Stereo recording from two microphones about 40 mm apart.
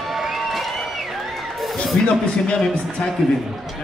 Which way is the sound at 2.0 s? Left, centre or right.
Left.